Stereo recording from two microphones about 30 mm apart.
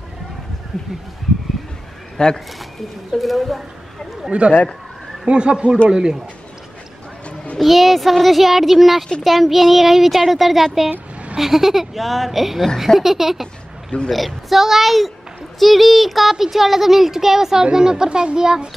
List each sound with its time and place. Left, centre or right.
0.7 s a child's voice: centre
2.1 s speech: left
3.1 s a child's voice: centre
4.3 s a child's voice: right
7.5 s a child's voice: centre
14.1 s a child's voice: centre; by 18.7 s right